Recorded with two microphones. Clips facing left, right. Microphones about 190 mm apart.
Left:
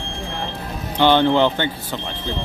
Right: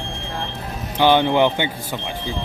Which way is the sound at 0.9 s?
10° right (ahead or behind).